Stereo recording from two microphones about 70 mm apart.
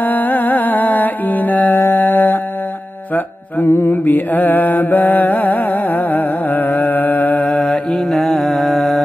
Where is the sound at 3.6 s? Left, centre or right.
Left; by 8.1 s centre.